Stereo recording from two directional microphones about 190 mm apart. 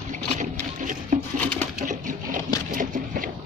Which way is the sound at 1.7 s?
40° right (ahead or behind).